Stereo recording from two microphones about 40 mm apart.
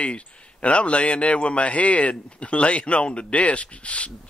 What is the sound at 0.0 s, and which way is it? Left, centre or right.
A man's voice, left.